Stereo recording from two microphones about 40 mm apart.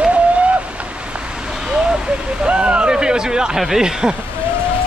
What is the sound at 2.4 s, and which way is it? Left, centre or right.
Speech, right.